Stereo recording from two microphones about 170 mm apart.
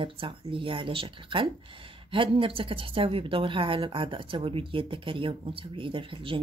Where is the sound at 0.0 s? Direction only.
30° right (ahead or behind).